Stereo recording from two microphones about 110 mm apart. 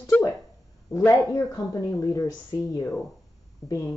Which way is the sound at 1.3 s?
35° left (ahead or behind).